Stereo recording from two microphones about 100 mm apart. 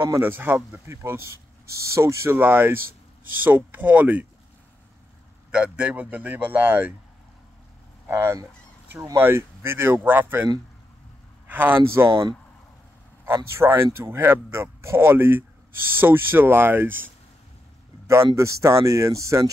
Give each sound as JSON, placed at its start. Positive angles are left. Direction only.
{"t": 0.2, "sound": "speech", "side_deg": -20}
{"t": 5.5, "sound": "speech", "side_deg": -10}
{"t": 8.1, "sound": "fowl", "side_deg": -30}
{"t": 9.0, "sound": "speech", "side_deg": -25}
{"t": 12.1, "sound": "speech", "side_deg": -55}
{"t": 13.2, "sound": "speech", "side_deg": -25}